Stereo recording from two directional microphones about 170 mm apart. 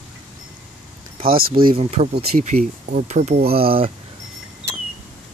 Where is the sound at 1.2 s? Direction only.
60° right (ahead or behind).